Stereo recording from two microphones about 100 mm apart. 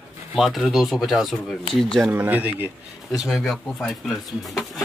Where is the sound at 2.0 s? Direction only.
15° right (ahead or behind).